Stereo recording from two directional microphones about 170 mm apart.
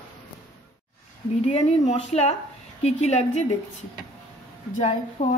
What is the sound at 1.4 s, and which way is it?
Speech, 40° left (ahead or behind).